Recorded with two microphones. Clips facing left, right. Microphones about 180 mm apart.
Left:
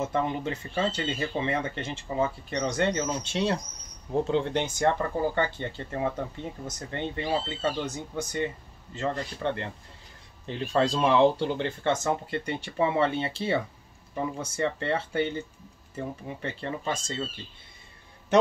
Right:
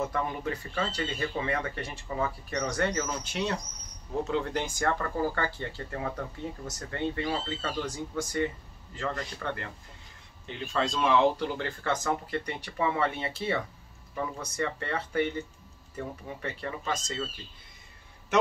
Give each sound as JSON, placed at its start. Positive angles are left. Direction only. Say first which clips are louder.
{"t": 0.0, "sound": "speech", "louder": "left 3 dB", "side_deg": 25}